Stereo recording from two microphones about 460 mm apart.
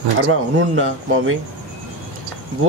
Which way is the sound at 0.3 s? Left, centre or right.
Right.